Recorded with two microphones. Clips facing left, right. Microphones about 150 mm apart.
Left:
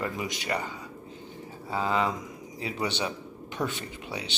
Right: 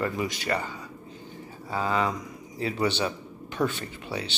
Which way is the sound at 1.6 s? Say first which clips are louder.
Right 1 dB; 20° left (ahead or behind).